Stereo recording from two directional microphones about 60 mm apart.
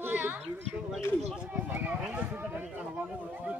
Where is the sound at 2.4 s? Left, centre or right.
Right.